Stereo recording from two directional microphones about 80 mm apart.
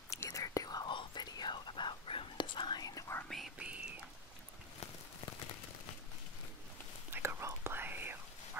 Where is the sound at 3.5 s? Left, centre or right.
Centre.